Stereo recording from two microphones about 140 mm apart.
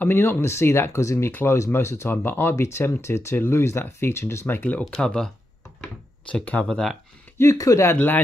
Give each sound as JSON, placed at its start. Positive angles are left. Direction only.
{"t": 0.0, "sound": "speech", "side_deg": 15}
{"t": 7.3, "sound": "speech", "side_deg": 20}